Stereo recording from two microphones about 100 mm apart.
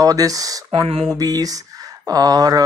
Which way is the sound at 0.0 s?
35° right (ahead or behind).